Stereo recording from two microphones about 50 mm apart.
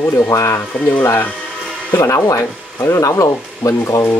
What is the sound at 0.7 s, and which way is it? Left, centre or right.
Speech, left.